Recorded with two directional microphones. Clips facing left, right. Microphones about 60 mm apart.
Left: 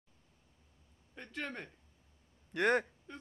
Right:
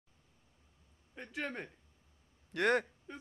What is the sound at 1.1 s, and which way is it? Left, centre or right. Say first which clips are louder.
Speech: right 2 dB; centre.